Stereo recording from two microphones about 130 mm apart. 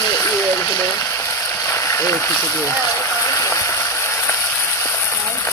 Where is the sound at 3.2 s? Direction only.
20° left (ahead or behind).